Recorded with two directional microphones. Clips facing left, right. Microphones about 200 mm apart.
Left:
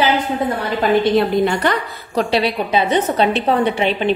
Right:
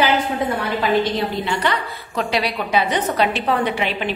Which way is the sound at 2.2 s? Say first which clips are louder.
Left 5 dB; 30° left (ahead or behind).